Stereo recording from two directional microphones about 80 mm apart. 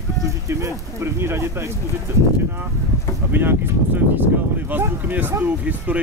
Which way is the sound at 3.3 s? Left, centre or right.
Right.